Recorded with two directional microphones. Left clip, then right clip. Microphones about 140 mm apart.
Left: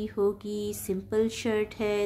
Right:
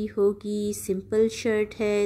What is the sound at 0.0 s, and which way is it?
A woman's voice, 25° right (ahead or behind).